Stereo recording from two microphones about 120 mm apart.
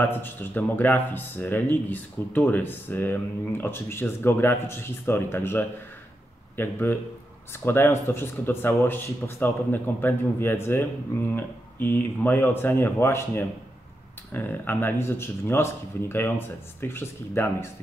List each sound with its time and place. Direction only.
0.0 s speech: 15° left (ahead or behind)